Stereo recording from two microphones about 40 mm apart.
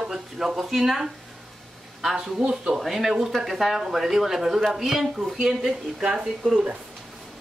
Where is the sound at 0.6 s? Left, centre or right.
Centre.